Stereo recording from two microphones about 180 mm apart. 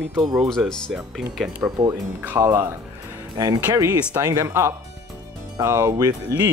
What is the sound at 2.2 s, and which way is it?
Speech, 15° right (ahead or behind).